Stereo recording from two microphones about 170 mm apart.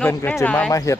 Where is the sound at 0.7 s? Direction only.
20° left (ahead or behind).